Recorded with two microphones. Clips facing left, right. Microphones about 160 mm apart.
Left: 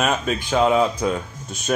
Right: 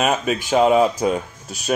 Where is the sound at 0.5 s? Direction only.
20° right (ahead or behind).